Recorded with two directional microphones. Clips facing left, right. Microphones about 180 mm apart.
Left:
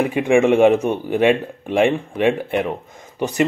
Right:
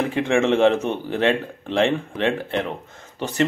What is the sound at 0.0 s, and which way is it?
Speech, 15° left (ahead or behind).